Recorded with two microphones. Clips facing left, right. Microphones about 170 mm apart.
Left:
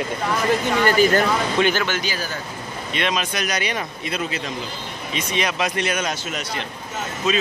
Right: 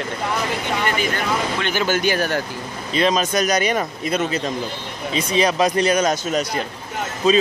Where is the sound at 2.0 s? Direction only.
60° right (ahead or behind).